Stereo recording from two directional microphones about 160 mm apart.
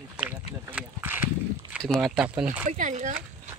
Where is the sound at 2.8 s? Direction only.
50° right (ahead or behind).